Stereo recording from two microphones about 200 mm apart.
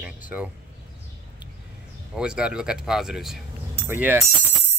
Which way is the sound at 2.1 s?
5° right (ahead or behind).